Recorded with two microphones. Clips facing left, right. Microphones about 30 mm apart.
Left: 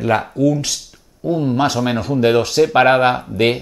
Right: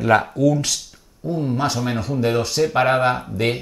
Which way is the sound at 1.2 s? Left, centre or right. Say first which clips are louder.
Left 5 dB; left.